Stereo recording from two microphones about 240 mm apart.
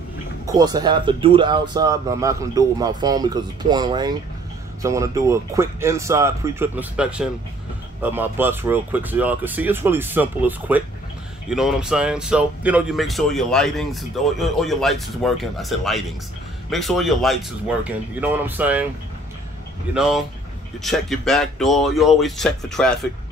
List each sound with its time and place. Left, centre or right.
0.5 s speech: centre
19.9 s speech: centre